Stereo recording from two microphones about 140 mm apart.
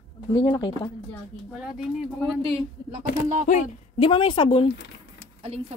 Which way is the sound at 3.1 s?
60° left (ahead or behind).